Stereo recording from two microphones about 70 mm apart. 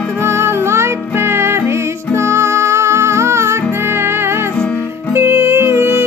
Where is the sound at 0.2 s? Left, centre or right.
Right.